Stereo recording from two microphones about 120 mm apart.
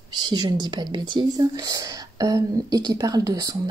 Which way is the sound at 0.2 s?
35° right (ahead or behind).